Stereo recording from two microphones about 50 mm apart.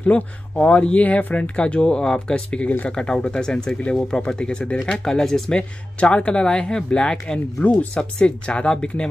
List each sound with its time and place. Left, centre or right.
0.0 s speech: left
5.6 s speech: left